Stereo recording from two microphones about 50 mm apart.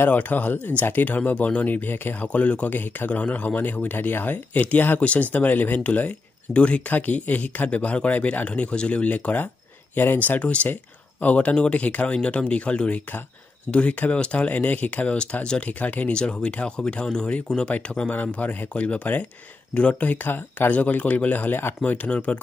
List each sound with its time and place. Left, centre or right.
0.1 s speech: left
2.2 s a man's voice: left
2.7 s speech: left
3.1 s speech: left
5.0 s speech: left
6.9 s a man's voice: left
11.3 s a man's voice: left
16.1 s a man's voice: centre
18.1 s speech: left
20.7 s speech: left
21.8 s a man's voice: left